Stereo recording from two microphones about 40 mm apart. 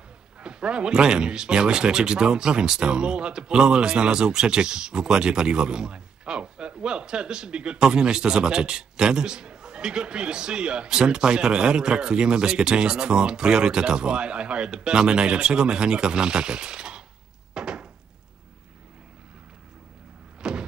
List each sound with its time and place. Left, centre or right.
0.4 s speech: right
17.6 s wood: right
20.4 s vehicle: centre